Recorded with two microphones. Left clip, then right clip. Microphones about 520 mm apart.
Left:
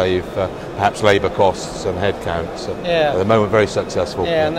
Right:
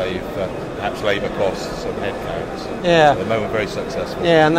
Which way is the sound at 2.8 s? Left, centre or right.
Right.